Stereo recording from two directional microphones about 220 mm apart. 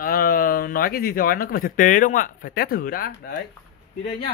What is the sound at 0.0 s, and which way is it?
Speech, 40° left (ahead or behind).